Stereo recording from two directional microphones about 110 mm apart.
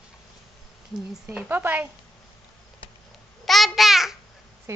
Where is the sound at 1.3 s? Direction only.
15° right (ahead or behind).